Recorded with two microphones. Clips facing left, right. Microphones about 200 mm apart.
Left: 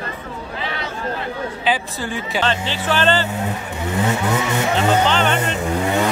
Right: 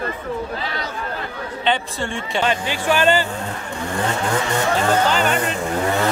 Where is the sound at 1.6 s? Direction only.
5° left (ahead or behind).